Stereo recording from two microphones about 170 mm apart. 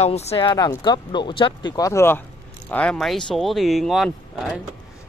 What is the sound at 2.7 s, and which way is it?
Speech, 5° left (ahead or behind).